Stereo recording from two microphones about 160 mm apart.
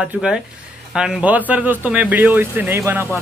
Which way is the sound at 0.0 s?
5° right (ahead or behind).